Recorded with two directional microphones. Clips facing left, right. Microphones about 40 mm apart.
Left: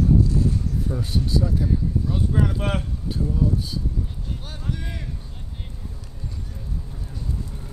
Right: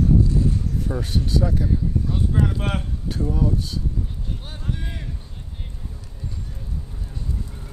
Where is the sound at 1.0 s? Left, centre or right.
Right.